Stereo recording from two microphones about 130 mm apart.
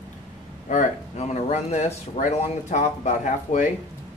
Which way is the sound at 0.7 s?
65° left (ahead or behind).